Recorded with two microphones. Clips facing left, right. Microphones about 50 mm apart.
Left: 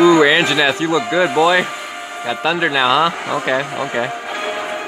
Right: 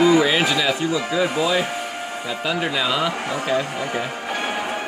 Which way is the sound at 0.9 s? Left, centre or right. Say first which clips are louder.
Left 6 dB; left.